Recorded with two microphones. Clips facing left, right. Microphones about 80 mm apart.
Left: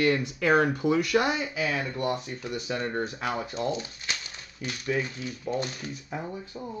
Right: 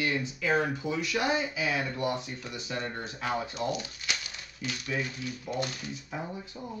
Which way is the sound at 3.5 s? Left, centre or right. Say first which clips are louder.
Left 2 dB; left.